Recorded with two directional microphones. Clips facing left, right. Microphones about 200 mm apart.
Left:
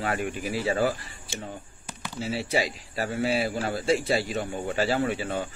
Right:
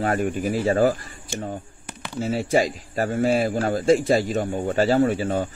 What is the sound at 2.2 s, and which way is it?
A man's voice, 45° right (ahead or behind).